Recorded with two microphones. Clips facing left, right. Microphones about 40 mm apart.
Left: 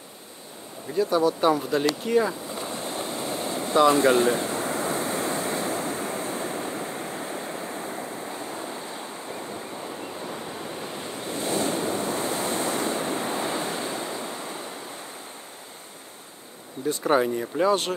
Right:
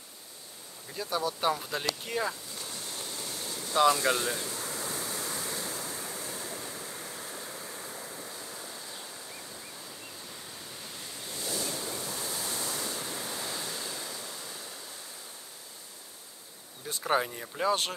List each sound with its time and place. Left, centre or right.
0.9 s speech: centre
1.7 s vehicle: centre; by 14.7 s left
17.1 s speech: left